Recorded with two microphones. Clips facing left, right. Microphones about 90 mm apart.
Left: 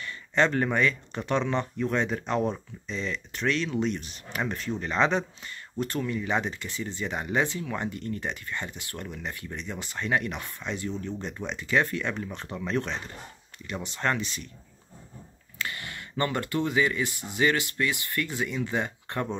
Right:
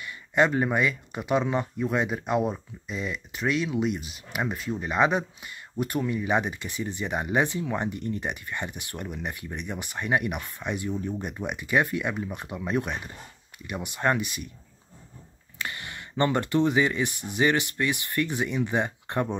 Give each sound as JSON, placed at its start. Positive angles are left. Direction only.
{"t": 0.0, "sound": "speech", "side_deg": -15}
{"t": 15.6, "sound": "speech", "side_deg": -20}